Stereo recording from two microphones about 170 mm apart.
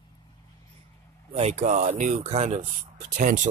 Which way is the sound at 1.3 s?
40° right (ahead or behind).